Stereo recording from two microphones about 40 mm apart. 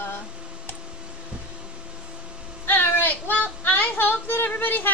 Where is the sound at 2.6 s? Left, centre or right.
Left.